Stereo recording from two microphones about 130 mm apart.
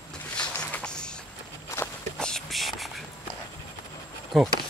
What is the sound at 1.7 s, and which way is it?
Walk, 20° left (ahead or behind).